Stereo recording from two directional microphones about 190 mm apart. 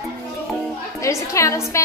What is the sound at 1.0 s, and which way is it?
Speech, 15° left (ahead or behind).